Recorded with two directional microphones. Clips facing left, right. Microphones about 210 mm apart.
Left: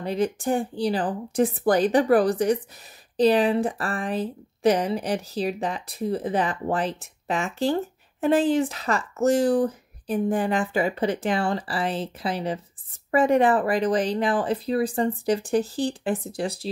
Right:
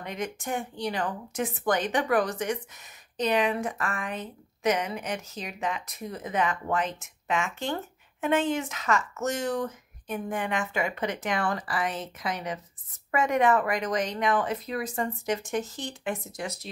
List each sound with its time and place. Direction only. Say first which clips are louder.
0.0 s speech: left 9 dB; 35° left (ahead or behind)